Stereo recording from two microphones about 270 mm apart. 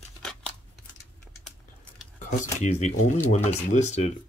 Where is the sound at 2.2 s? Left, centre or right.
Left.